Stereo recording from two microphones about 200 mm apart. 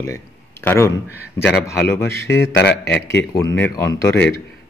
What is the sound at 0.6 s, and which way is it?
Speech, 15° left (ahead or behind).